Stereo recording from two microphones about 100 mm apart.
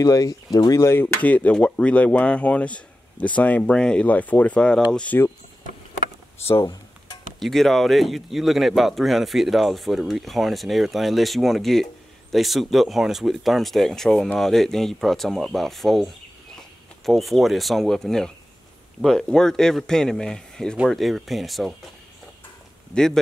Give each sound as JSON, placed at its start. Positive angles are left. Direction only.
{"t": 0.0, "sound": "speech", "side_deg": 35}
{"t": 0.9, "sound": "speech", "side_deg": 20}
{"t": 6.6, "sound": "a sound", "side_deg": 40}
{"t": 7.3, "sound": "speech", "side_deg": 0}
{"t": 22.9, "sound": "speech", "side_deg": 5}